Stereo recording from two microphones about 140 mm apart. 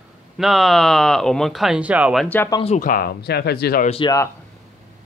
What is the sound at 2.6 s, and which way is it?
Speech, 65° left (ahead or behind).